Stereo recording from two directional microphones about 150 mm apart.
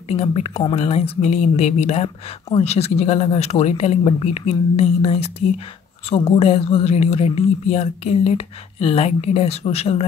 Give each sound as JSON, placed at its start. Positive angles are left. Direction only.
{"t": 0.1, "sound": "speech", "side_deg": 40}